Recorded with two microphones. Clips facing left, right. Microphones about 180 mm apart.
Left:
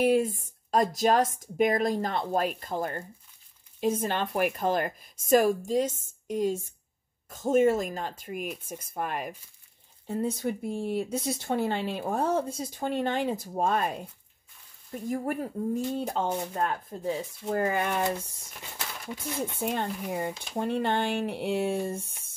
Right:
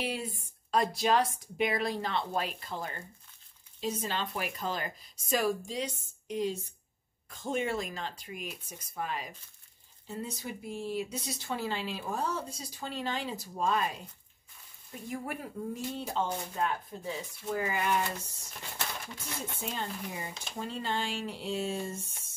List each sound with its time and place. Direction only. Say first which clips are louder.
0.0 s speech: left 12 dB; 50° left (ahead or behind)
14.9 s speech: left 7 dB; 45° left (ahead or behind)
19.6 s speech: left 6 dB; 60° left (ahead or behind)